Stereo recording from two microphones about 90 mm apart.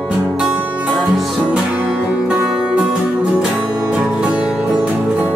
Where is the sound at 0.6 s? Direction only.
15° right (ahead or behind).